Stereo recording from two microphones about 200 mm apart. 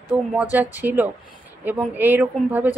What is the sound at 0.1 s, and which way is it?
A woman's voice, 10° right (ahead or behind).